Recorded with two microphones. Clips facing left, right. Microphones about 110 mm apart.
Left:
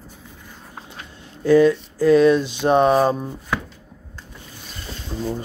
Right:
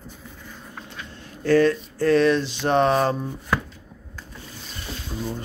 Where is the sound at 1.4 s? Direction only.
15° left (ahead or behind).